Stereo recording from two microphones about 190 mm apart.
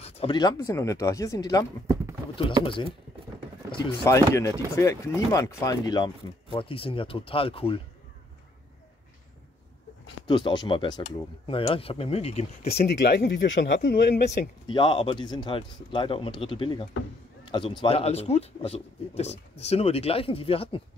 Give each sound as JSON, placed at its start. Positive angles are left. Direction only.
{"t": 0.0, "sound": "speech", "side_deg": 30}
{"t": 10.2, "sound": "speech", "side_deg": 25}
{"t": 12.8, "sound": "speech", "side_deg": 60}
{"t": 14.7, "sound": "a man's voice", "side_deg": 25}